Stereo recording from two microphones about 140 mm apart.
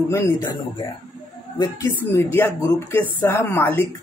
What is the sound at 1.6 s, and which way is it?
Speech, 20° left (ahead or behind).